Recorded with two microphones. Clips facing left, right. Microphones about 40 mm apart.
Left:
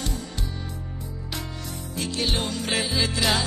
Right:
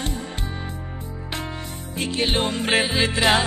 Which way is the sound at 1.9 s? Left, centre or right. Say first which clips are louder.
Right 4 dB; right.